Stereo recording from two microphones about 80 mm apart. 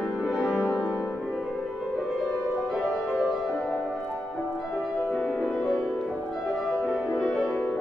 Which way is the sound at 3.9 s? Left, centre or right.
Centre.